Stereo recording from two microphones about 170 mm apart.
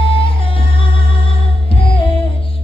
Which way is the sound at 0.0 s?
30° left (ahead or behind).